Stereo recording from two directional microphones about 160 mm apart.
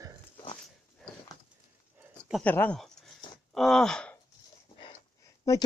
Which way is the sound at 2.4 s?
10° left (ahead or behind).